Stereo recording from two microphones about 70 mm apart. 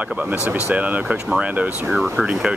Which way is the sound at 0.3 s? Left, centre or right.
Right.